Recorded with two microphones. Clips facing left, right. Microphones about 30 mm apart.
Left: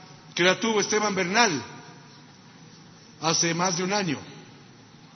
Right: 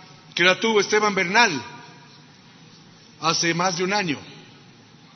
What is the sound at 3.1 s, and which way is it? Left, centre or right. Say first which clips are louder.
A man's voice: right 3 dB; centre.